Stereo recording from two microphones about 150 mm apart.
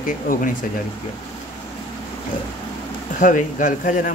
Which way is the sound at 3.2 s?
60° left (ahead or behind).